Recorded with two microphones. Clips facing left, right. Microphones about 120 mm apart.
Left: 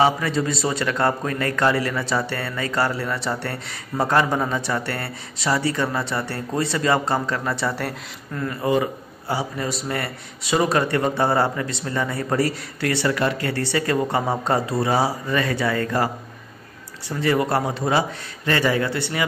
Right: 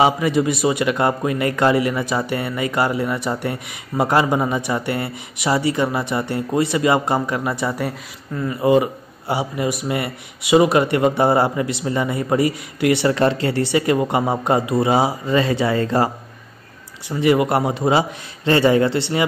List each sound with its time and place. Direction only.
0.0 s a man's voice: 15° right (ahead or behind)
17.1 s speech: 15° right (ahead or behind)